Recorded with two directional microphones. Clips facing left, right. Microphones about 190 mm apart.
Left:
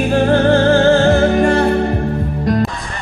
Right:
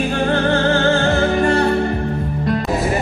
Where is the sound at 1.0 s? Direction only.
45° left (ahead or behind).